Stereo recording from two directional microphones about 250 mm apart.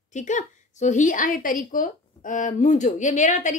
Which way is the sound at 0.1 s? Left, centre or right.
Left.